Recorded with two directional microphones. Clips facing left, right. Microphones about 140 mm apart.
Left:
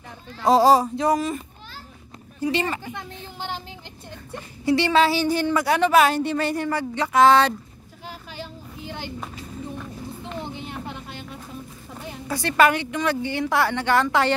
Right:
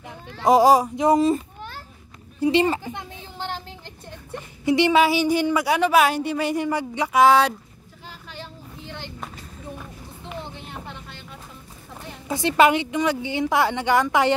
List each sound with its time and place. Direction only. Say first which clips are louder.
0.4 s speech: right 1 dB; 15° right (ahead or behind)
2.4 s speech: right 5 dB; 25° right (ahead or behind)
3.3 s speech: right 1 dB; 5° left (ahead or behind)
4.6 s a woman's voice: right 1 dB; 15° right (ahead or behind)
8.3 s a sound: left 2 dB; 5° left (ahead or behind)
10.7 s vehicle: left 3 dB; 10° left (ahead or behind)
12.3 s a woman's voice: right 2 dB; 20° right (ahead or behind)